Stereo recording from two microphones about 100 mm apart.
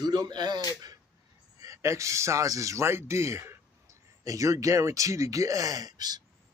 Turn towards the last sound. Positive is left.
turn(degrees=-40)  # may be behind; listen again after turning